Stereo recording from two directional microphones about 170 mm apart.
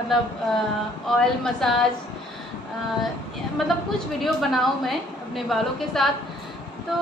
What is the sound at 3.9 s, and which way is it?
A woman's voice, centre (ahead or behind).